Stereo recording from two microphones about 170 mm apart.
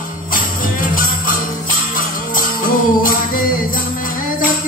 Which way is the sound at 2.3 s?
55° left (ahead or behind).